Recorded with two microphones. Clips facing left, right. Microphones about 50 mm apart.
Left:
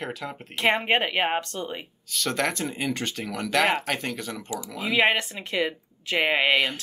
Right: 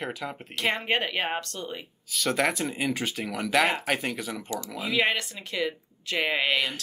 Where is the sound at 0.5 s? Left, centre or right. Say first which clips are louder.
Left 4 dB; left.